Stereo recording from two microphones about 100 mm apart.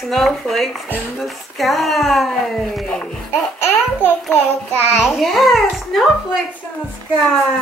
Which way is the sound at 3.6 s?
20° left (ahead or behind).